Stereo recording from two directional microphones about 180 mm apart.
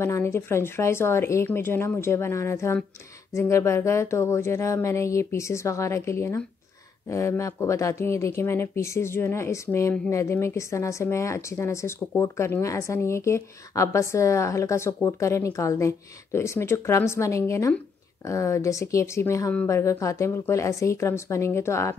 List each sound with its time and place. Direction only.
0.0 s speech: 15° left (ahead or behind)